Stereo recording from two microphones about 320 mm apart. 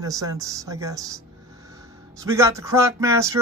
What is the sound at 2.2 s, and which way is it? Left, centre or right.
Speech, centre.